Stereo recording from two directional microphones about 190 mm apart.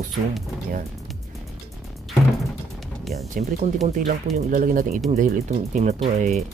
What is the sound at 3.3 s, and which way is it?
Speech, 40° right (ahead or behind).